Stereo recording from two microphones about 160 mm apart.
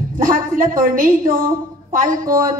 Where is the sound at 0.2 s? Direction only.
60° right (ahead or behind).